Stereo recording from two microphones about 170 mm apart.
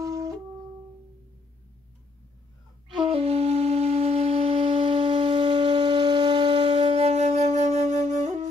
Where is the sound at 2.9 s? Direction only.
35° right (ahead or behind).